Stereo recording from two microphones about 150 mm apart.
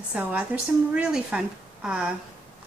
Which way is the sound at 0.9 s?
5° right (ahead or behind).